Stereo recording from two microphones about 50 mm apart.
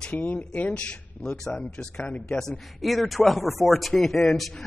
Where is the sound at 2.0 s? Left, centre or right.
Left.